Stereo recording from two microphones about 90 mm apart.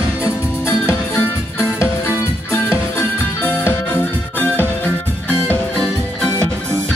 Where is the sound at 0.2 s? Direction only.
30° left (ahead or behind).